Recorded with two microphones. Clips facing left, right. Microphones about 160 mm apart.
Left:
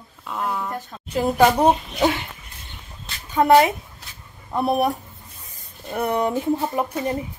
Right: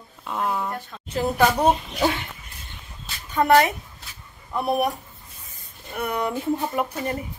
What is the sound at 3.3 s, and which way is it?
Speech, 15° left (ahead or behind).